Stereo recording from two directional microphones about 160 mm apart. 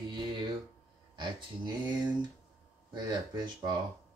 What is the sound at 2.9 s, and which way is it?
Speech, 25° right (ahead or behind).